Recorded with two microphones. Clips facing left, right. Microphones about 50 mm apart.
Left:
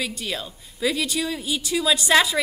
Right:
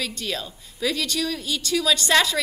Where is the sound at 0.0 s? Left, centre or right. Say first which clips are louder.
Even; centre.